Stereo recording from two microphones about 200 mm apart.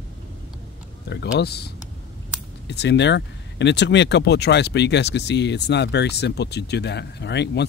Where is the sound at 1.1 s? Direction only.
55° left (ahead or behind).